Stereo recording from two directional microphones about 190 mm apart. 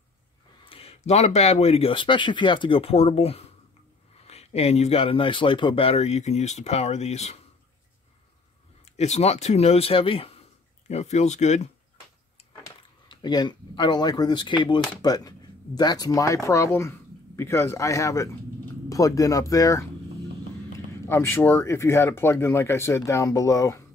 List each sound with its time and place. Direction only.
0.7 s speech: 30° left (ahead or behind)
8.8 s speech: 35° left (ahead or behind)
13.1 s speech: 20° left (ahead or behind)
21.1 s speech: 10° left (ahead or behind)